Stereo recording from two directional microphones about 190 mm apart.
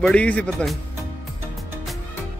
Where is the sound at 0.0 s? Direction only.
5° left (ahead or behind).